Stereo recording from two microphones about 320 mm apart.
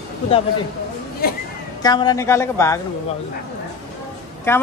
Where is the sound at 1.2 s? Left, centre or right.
Left.